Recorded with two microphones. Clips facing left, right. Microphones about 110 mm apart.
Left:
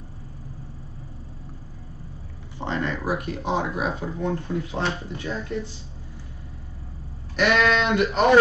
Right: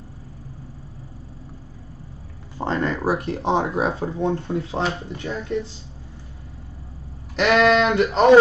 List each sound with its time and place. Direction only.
2.6 s speech: 35° right (ahead or behind)
7.3 s speech: 35° right (ahead or behind)